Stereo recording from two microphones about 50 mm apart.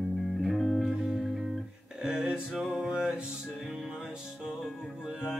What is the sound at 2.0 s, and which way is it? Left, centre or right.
Music, centre.